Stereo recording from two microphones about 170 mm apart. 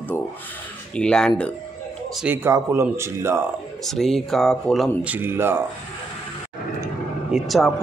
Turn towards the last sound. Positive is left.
turn(degrees=0)  # may be behind; listen again after turning